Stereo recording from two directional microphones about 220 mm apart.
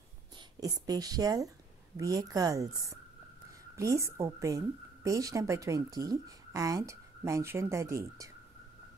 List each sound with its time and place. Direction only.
0.6 s a woman's voice: 15° right (ahead or behind)